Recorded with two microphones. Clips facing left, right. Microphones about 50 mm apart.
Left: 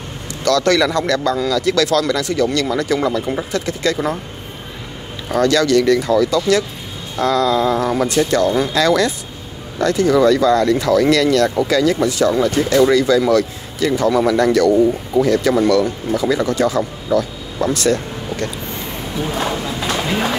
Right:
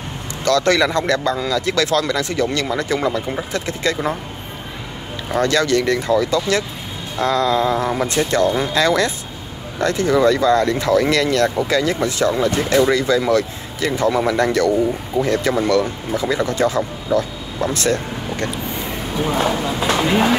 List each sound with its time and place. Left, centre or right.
0.5 s speech: right
5.3 s speech: right